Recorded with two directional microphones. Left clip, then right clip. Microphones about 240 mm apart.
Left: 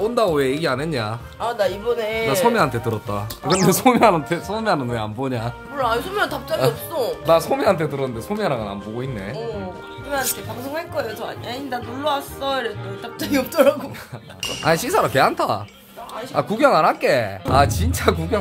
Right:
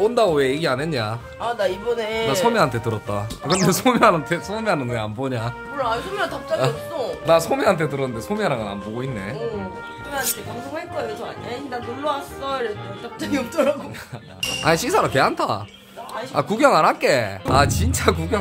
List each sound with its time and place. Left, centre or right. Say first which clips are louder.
0.0 s speech: right 1 dB; centre
1.4 s speech: left 1 dB; centre
2.0 s speech: left 1 dB; centre
5.8 s speech: left 3 dB; left
7.2 s speech: even; centre
11.4 s speech: even; left
14.6 s speech: even; centre